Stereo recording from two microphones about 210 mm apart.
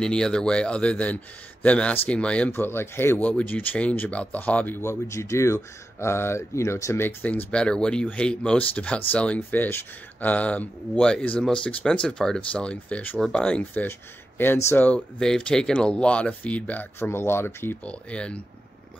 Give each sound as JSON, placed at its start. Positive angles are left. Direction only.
{"t": 0.0, "sound": "speech", "side_deg": 5}